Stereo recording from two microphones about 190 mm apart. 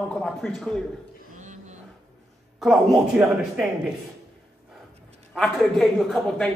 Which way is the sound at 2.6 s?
Centre (ahead or behind).